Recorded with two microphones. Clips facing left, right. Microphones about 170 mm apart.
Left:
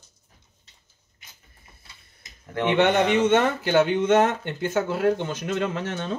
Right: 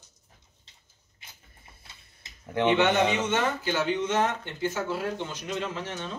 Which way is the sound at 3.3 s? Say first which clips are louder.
Left 7 dB; 60° left (ahead or behind).